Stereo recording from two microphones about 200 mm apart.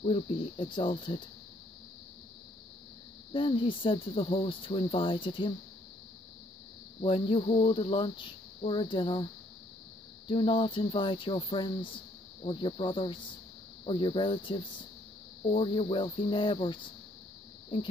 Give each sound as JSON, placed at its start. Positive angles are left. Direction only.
{"t": 0.0, "sound": "speech", "side_deg": 25}
{"t": 3.3, "sound": "speech", "side_deg": 25}
{"t": 7.0, "sound": "speech", "side_deg": 25}